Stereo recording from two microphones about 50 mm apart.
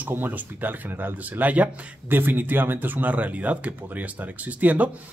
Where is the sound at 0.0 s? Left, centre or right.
Right.